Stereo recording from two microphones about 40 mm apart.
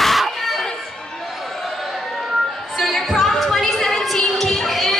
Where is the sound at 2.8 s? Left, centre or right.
Centre.